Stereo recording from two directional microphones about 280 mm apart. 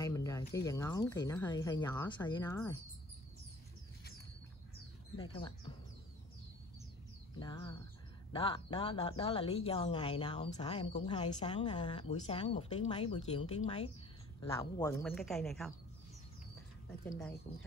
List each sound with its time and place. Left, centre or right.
0.0 s speech: centre
5.1 s speech: centre
7.3 s a woman's voice: centre
14.9 s speech: centre
17.0 s speech: centre